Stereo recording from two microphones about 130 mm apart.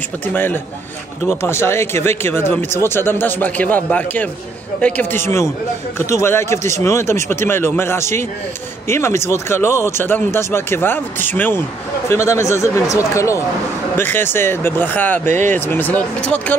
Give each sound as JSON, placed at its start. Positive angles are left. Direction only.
{"t": 0.3, "sound": "speech", "side_deg": 15}
{"t": 6.1, "sound": "speech", "side_deg": 20}
{"t": 15.2, "sound": "speech", "side_deg": -65}
{"t": 15.5, "sound": "speech", "side_deg": 15}